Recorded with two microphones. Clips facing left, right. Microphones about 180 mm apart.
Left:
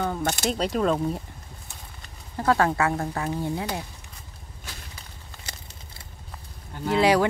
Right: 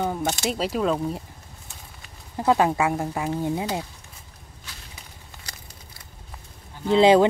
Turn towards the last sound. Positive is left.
turn(degrees=-25)  # may be behind; listen again after turning